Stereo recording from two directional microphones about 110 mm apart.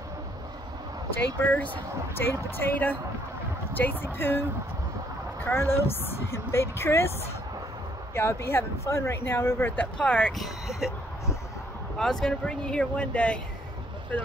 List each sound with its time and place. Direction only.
1.1 s speech: 15° left (ahead or behind)
8.1 s speech: 25° left (ahead or behind); by 10.5 s 5° left (ahead or behind)
12.0 s speech: 5° left (ahead or behind)